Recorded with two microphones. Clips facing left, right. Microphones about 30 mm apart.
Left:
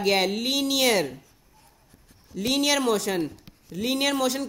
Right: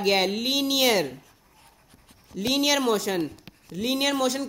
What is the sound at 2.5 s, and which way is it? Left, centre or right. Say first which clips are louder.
Speech: even; centre.